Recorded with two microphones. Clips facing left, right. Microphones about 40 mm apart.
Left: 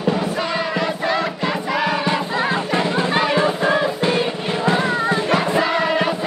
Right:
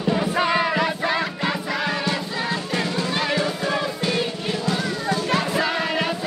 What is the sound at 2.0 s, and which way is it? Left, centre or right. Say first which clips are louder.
Music: left 5 dB; left.